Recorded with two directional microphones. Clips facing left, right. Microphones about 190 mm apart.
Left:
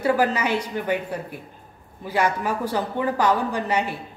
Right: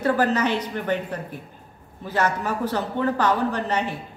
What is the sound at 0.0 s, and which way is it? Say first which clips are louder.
A woman's voice: even; 10° left (ahead or behind).